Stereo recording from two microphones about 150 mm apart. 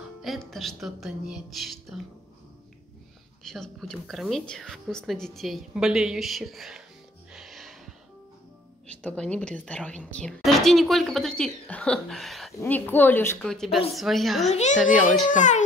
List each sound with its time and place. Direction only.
0.2 s a woman's voice: centre (ahead or behind)
3.4 s a woman's voice: 5° left (ahead or behind)
7.3 s music: centre (ahead or behind)
8.8 s a woman's voice: 10° left (ahead or behind)
12.5 s speech: 10° left (ahead or behind)
13.4 s a woman's voice: 5° left (ahead or behind)
14.5 s a child's voice: 50° left (ahead or behind)